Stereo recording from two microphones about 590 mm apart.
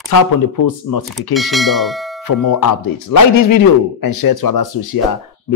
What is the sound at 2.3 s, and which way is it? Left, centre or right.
Speech, left.